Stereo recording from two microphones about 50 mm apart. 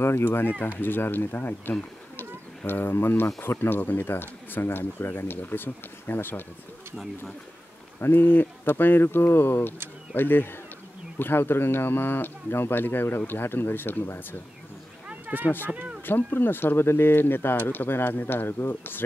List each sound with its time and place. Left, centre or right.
0.3 s speech: left
8.0 s speech: left
15.0 s a sound: right
16.1 s speech: left